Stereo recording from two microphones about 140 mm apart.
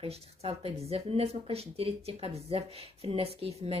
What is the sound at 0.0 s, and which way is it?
Speech, 45° right (ahead or behind).